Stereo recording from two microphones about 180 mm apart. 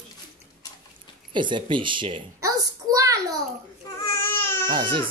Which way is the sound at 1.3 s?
25° right (ahead or behind).